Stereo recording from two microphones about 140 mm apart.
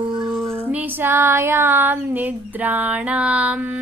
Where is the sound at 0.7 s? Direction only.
15° right (ahead or behind).